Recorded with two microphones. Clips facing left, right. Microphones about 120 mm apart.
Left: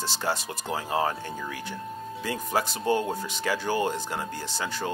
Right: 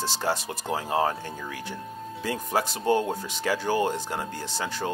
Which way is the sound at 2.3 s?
30° right (ahead or behind).